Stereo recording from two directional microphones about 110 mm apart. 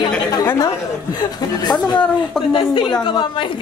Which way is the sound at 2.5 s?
50° left (ahead or behind).